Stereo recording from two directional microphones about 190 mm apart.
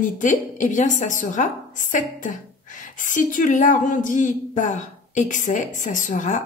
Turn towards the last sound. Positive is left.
turn(degrees=40)  # may be behind; listen again after turning